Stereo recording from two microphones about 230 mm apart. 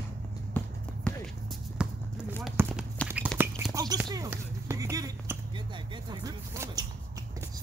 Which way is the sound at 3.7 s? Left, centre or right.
Centre.